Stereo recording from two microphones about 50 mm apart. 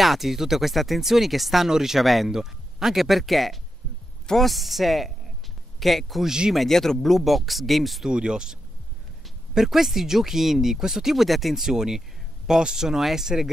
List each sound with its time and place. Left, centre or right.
0.0 s speech: centre
6.2 s speech: centre
6.5 s speech: centre
8.1 s speech: centre